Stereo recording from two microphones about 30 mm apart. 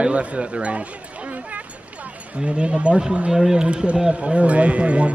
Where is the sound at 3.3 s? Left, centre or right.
Centre.